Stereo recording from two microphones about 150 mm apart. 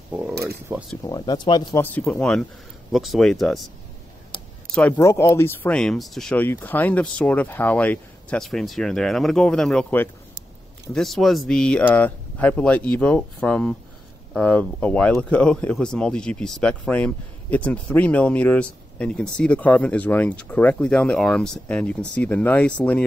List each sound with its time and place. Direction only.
0.1 s speech: 5° right (ahead or behind)
1.0 s speech: 30° left (ahead or behind)
1.8 s speech: 15° left (ahead or behind)
4.7 s speech: 10° left (ahead or behind)
5.0 s speech: 20° left (ahead or behind)